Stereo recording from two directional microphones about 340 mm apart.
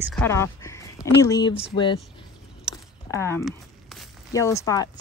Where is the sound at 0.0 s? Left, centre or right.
Centre.